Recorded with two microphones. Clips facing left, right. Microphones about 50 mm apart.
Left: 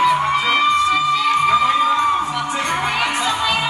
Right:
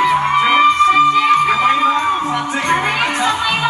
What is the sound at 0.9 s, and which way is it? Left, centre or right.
Music, right.